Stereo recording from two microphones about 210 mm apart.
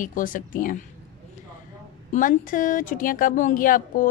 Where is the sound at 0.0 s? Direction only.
40° left (ahead or behind).